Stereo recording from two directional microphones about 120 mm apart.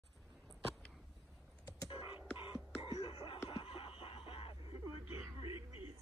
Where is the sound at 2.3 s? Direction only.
45° left (ahead or behind).